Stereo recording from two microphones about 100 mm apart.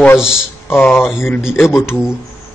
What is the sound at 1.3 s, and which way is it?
Speech, 5° right (ahead or behind).